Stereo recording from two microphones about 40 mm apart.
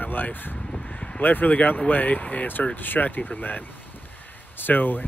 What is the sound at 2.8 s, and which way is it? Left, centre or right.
Speech, left.